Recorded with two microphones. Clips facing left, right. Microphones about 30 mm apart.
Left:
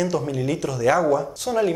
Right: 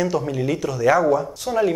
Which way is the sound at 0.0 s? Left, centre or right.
Centre.